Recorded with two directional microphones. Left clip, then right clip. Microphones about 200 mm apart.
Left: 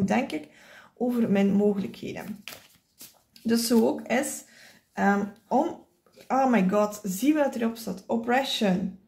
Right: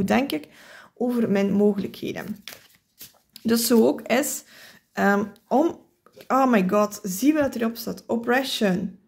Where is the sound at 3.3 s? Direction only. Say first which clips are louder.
Right 4 dB; 55° right (ahead or behind).